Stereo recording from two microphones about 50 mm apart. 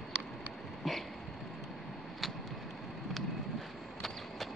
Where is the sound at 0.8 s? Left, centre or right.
Centre.